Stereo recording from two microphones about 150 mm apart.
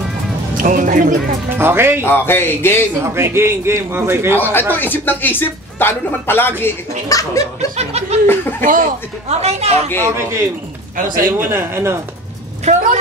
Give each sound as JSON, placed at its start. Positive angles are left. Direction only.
{"t": 0.6, "sound": "speech", "side_deg": -65}
{"t": 1.5, "sound": "a man's voice", "side_deg": -15}
{"t": 2.0, "sound": "speech", "side_deg": 15}
{"t": 3.0, "sound": "a man's voice", "side_deg": -15}
{"t": 4.4, "sound": "speech", "side_deg": 15}
{"t": 7.7, "sound": "speech", "side_deg": -45}
{"t": 8.3, "sound": "speech", "side_deg": 15}
{"t": 8.6, "sound": "speech", "side_deg": -65}
{"t": 9.3, "sound": "a woman's voice", "side_deg": -45}
{"t": 11.0, "sound": "speech", "side_deg": -65}
{"t": 11.3, "sound": "a man's voice", "side_deg": -15}
{"t": 12.6, "sound": "speech", "side_deg": -55}